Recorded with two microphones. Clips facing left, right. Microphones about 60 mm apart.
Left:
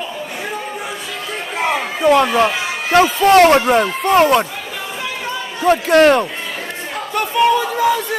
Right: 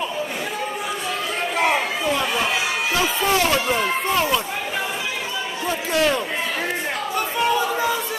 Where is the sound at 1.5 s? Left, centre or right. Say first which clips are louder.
Left 1 dB; centre.